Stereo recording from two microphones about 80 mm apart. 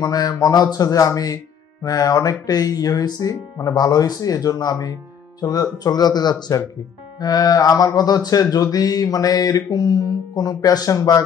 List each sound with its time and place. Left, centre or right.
0.0 s mantra: left
5.4 s speech: left
7.2 s mantra: left